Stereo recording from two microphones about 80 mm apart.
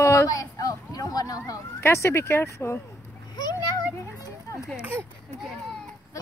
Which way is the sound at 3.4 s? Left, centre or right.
Left.